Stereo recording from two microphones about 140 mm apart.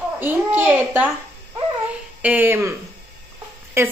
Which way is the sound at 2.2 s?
15° right (ahead or behind).